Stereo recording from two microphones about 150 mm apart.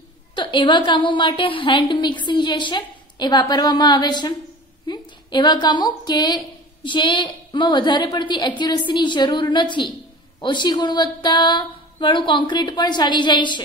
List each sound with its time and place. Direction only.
0.4 s a woman's voice: 30° left (ahead or behind)